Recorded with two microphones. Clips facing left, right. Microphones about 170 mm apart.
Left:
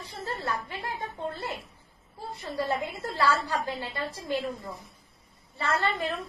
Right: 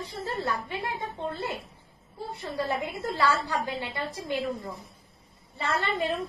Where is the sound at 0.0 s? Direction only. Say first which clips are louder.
Right 3 dB; 20° right (ahead or behind).